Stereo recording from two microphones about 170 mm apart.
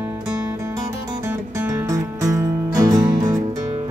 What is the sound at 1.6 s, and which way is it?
Music, 15° right (ahead or behind).